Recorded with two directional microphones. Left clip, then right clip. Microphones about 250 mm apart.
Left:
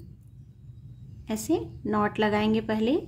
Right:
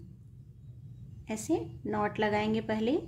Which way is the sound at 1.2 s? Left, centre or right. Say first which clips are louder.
Left 4 dB; centre.